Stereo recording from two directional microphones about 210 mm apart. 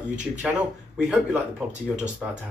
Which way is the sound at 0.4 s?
Centre (ahead or behind).